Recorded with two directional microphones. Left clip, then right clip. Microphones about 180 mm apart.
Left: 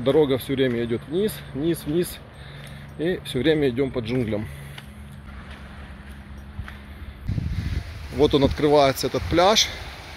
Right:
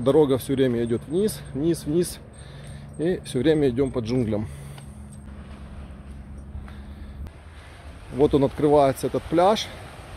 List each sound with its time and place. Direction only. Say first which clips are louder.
0.0 s speech: even; 15° right (ahead or behind)
8.2 s speech: left 1 dB; 5° right (ahead or behind)